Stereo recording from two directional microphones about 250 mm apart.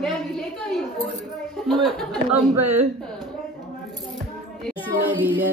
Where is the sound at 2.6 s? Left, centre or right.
Right.